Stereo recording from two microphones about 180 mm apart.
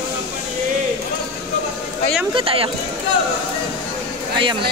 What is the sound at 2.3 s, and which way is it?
Speech, 30° right (ahead or behind).